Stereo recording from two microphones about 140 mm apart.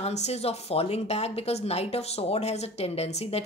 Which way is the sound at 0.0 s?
50° left (ahead or behind).